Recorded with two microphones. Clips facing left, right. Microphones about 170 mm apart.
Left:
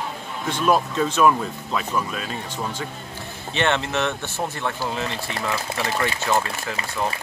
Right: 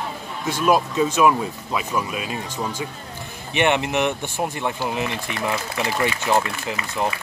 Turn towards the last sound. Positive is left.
turn(degrees=-20)  # may be behind; listen again after turning